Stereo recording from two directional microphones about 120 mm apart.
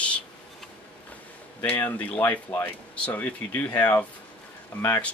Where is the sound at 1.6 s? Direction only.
15° left (ahead or behind).